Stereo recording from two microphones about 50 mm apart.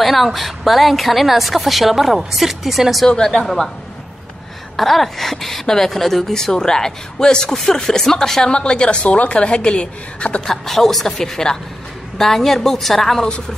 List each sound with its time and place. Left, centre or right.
0.0 s a woman's voice: centre
3.1 s speech: centre
4.7 s a woman's voice: centre; by 10.4 s left
10.4 s a woman's voice: centre